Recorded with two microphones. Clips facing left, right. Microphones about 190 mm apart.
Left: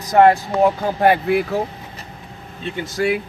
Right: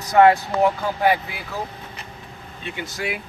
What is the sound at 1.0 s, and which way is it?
Speech, 55° left (ahead or behind).